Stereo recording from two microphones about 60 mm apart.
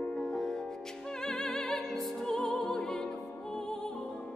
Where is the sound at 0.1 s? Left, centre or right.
Centre.